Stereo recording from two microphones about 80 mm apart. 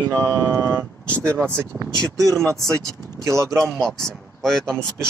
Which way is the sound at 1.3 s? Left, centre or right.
Centre.